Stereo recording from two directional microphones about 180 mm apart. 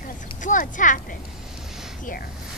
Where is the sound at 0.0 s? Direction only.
45° left (ahead or behind).